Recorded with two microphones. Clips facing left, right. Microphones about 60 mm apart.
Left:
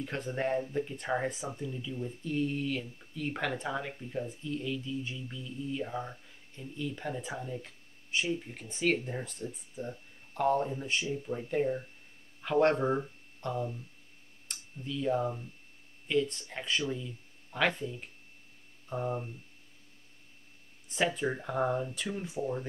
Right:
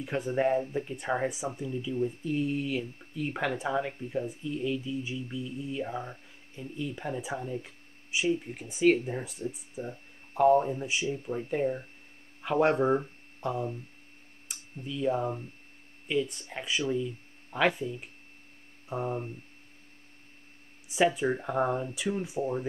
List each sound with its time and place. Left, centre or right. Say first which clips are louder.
0.0 s speech: right 5 dB; centre
14.5 s a sound: right 1 dB; centre
16.1 s speech: even; centre
19.0 s speech: even; centre
20.9 s speech: right 5 dB; centre